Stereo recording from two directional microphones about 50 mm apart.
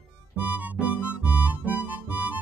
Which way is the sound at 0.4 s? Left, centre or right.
Right.